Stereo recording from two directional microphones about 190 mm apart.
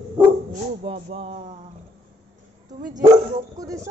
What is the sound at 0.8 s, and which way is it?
Music, 30° right (ahead or behind).